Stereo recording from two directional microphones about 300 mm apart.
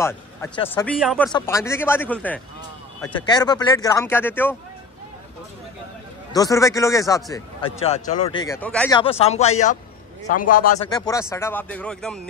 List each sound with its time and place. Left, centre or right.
0.0 s speech: centre
6.3 s speech: centre
9.0 s speech: centre
10.9 s speech: centre